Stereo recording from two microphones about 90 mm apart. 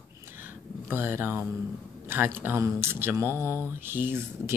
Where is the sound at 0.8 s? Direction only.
25° right (ahead or behind).